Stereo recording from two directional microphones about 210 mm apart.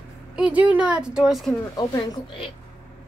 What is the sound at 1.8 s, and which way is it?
Speech, 15° left (ahead or behind).